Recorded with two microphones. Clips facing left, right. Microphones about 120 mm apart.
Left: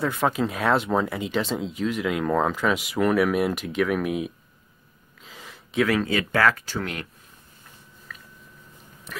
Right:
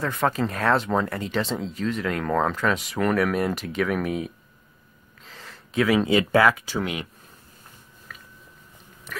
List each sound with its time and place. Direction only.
0.0 s speech: 5° left (ahead or behind)
5.2 s a sound: 5° left (ahead or behind)
6.1 s speech: 20° right (ahead or behind)